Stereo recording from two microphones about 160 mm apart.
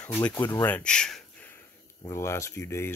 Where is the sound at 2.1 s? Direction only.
15° left (ahead or behind).